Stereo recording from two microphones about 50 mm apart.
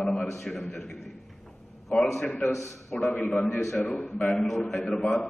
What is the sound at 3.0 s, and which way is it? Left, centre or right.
A man's voice, left.